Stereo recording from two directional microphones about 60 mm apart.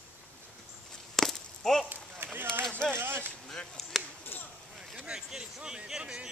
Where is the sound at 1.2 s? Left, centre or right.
Centre.